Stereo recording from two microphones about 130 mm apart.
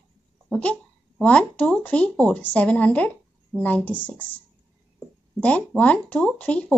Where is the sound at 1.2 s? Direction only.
10° left (ahead or behind).